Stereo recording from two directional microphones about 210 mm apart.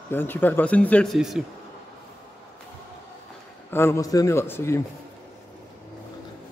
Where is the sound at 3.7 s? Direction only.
10° left (ahead or behind).